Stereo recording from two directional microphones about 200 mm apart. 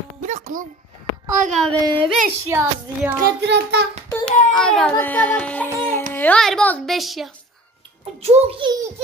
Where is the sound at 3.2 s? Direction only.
60° right (ahead or behind).